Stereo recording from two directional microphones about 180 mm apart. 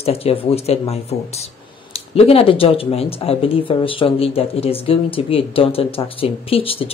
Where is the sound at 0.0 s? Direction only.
35° left (ahead or behind).